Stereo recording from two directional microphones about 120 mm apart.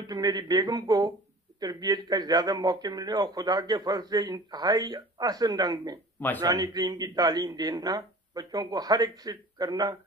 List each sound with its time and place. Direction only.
0.0 s speech: 35° right (ahead or behind)